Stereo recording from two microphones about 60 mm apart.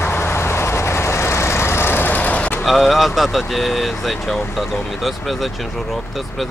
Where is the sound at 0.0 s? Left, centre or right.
Left.